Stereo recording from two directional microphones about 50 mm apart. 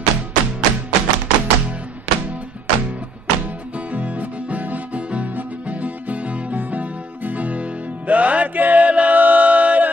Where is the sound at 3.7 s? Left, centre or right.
Right.